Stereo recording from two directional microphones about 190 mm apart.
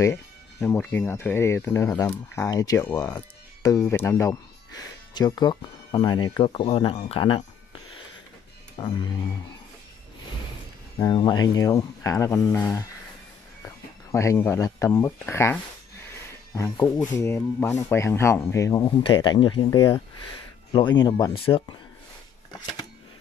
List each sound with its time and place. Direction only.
0.0 s speech: 15° left (ahead or behind)
8.7 s music: 25° left (ahead or behind)
11.0 s speech: 20° left (ahead or behind)
14.1 s speech: 15° left (ahead or behind)
22.5 s shuffling cards: 20° left (ahead or behind)